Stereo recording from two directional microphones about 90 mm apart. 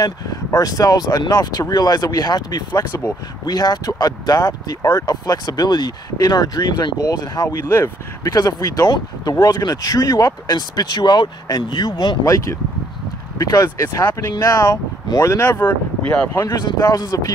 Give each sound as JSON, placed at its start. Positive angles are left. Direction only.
{"t": 0.0, "sound": "speech", "side_deg": 45}
{"t": 2.9, "sound": "speech", "side_deg": 30}
{"t": 3.4, "sound": "speech", "side_deg": 50}
{"t": 8.3, "sound": "speech", "side_deg": 45}
{"t": 12.3, "sound": "speech", "side_deg": 35}
{"t": 16.4, "sound": "speech", "side_deg": 50}